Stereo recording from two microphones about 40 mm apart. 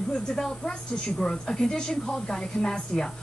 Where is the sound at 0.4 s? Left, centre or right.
Centre.